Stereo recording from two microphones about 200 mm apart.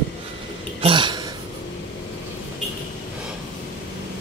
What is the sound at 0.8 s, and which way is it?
Speech, 25° right (ahead or behind).